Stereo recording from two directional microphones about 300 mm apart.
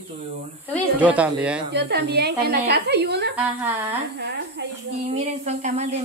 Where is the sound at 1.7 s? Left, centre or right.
Right.